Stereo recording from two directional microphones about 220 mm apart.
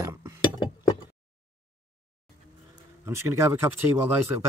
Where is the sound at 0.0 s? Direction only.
15° right (ahead or behind).